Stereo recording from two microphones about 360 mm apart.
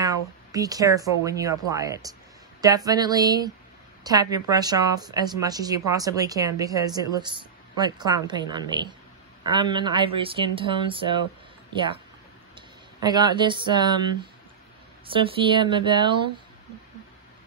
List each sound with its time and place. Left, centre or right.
0.0 s speech: centre